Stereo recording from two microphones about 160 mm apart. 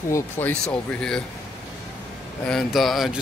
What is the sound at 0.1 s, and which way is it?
Speech, 15° left (ahead or behind).